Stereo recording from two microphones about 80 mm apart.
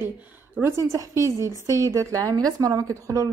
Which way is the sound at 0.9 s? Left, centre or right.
Right.